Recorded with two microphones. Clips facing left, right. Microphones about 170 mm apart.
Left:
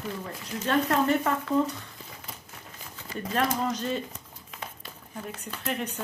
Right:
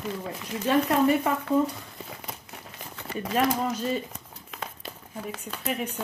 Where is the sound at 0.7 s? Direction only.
10° right (ahead or behind).